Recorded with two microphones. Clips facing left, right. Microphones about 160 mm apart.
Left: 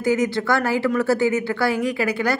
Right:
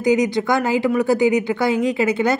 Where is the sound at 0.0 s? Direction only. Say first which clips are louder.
Right 3 dB; 15° right (ahead or behind).